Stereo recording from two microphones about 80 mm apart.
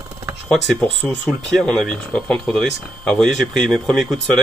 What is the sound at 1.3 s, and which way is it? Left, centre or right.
Speech, centre.